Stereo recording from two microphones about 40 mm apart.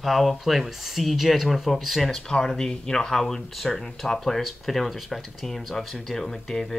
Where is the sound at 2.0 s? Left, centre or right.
Centre.